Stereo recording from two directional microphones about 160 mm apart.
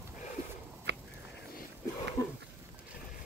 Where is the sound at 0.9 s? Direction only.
90° right.